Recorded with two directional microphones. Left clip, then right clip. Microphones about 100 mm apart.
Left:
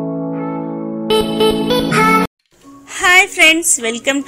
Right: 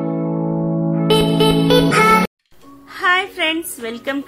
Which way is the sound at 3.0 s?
40° left (ahead or behind).